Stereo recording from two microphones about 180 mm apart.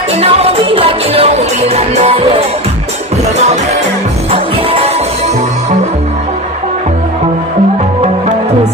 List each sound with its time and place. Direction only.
0.1 s music: 35° right (ahead or behind)
4.3 s music: 30° right (ahead or behind)